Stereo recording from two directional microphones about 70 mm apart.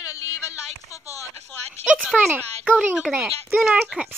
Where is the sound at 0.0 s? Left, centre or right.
Left.